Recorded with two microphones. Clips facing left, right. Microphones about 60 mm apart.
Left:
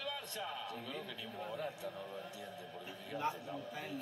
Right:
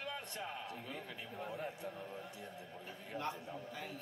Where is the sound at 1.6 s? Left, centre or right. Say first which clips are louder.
Left 1 dB; right.